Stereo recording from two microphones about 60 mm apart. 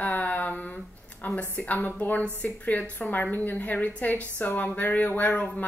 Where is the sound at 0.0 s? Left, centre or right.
Left.